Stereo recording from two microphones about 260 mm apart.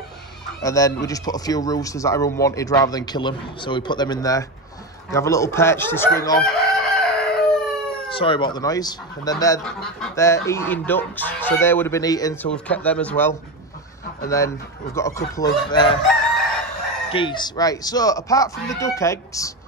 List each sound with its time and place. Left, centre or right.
0.6 s speech: centre
6.4 s chicken: centre
8.1 s speech: centre
9.6 s speech: centre
17.1 s speech: centre